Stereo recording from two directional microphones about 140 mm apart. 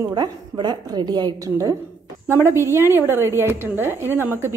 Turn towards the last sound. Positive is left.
turn(degrees=-15)  # may be behind; listen again after turning